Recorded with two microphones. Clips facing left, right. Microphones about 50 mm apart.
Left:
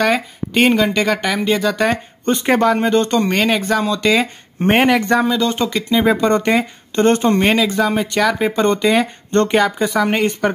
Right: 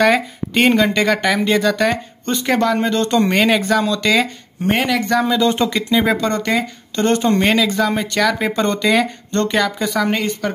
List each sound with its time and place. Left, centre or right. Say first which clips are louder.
0.0 s speech: right 2 dB; centre
1.9 s speech: left 2 dB; left
3.1 s speech: right 1 dB; centre
4.6 s speech: left 4 dB; left
5.2 s speech: right 1 dB; centre
6.5 s speech: left 3 dB; left
7.3 s speech: left 1 dB; centre